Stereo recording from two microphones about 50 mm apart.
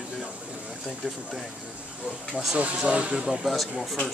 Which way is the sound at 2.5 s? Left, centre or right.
Right.